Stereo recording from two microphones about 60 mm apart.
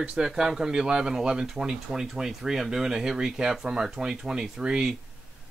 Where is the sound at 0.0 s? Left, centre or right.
Centre.